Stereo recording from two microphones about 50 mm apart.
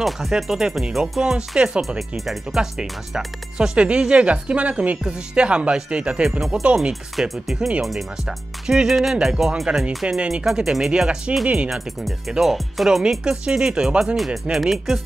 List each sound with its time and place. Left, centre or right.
0.4 s speech: centre
3.5 s a woman's voice: centre
6.9 s a woman's voice: centre; by 11.7 s right
11.7 s speech: centre
13.2 s speech: centre
14.1 s speech: centre